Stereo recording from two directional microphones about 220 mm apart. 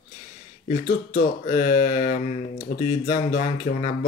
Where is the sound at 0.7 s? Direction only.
35° left (ahead or behind).